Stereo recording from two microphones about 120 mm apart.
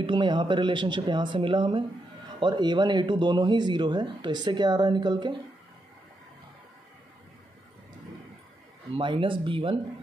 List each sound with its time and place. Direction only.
0.0 s speech: 40° right (ahead or behind)
8.9 s speech: 45° right (ahead or behind)